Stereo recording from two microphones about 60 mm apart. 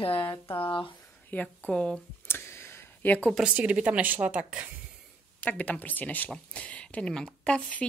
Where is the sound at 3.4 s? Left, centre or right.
Right.